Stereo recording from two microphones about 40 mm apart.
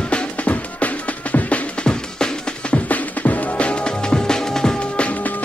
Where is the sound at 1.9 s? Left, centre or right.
Centre.